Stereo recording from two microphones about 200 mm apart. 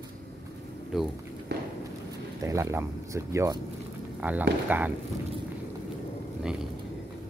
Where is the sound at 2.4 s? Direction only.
15° right (ahead or behind).